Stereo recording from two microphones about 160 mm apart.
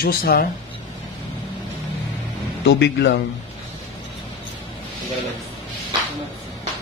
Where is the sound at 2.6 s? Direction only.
90° left.